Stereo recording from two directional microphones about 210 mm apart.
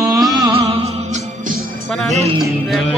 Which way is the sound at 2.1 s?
30° right (ahead or behind).